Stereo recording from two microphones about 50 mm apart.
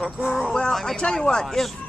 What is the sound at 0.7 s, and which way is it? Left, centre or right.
Speech, centre.